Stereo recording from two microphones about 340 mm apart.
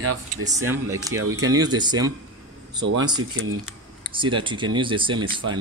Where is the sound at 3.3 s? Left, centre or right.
Right.